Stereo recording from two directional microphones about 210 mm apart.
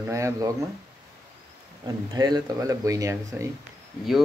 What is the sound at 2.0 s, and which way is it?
Speech, 20° right (ahead or behind).